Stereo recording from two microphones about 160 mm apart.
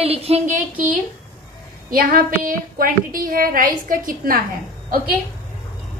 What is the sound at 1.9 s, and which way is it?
A woman's voice, 65° right (ahead or behind).